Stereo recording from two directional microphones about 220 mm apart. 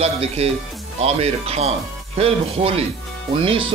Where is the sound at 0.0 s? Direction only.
25° right (ahead or behind).